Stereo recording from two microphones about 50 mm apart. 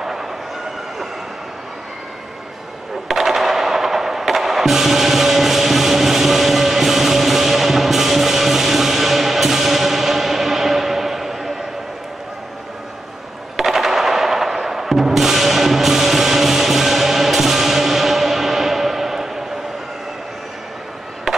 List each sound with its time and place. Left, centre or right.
0.0 s train: centre
3.1 s music: centre
13.6 s music: centre
21.3 s skateboard: centre